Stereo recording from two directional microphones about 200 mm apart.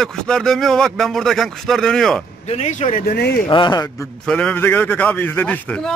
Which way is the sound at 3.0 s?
55° left (ahead or behind).